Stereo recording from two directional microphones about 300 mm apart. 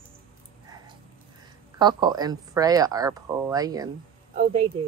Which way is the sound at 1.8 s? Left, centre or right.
Centre.